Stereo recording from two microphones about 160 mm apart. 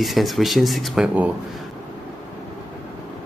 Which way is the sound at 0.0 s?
Centre (ahead or behind).